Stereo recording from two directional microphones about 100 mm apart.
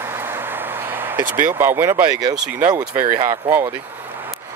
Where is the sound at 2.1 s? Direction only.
40° right (ahead or behind).